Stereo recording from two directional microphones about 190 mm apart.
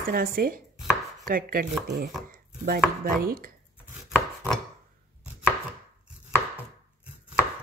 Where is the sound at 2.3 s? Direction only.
45° right (ahead or behind).